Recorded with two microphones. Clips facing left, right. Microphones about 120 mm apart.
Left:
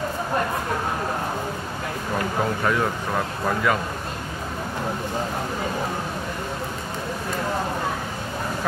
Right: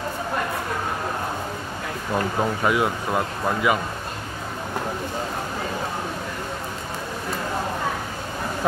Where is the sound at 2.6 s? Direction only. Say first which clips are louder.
Right 1 dB; 10° right (ahead or behind).